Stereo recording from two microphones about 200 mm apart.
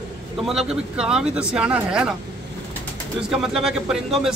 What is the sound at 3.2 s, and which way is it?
A man's voice, centre (ahead or behind).